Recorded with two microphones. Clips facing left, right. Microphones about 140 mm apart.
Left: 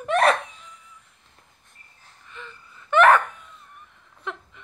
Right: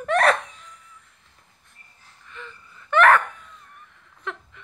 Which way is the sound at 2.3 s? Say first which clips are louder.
Right 1 dB; 20° left (ahead or behind).